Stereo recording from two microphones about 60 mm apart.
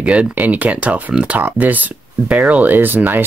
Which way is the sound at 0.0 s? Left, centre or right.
Right.